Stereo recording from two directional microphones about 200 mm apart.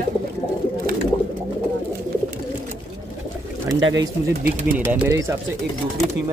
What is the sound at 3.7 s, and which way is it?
Speech, 70° right (ahead or behind).